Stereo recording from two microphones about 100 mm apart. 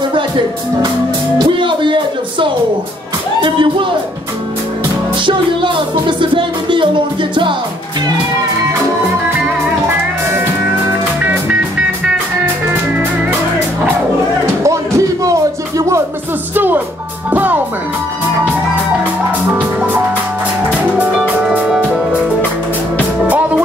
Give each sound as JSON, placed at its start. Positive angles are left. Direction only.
{"t": 1.4, "sound": "music", "side_deg": -55}
{"t": 3.3, "sound": "speech", "side_deg": -55}
{"t": 5.2, "sound": "music", "side_deg": -55}
{"t": 14.4, "sound": "music", "side_deg": -30}
{"t": 16.5, "sound": "music", "side_deg": -20}
{"t": 17.3, "sound": "speech", "side_deg": -15}